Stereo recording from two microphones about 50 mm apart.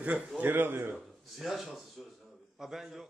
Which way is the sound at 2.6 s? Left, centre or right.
Centre.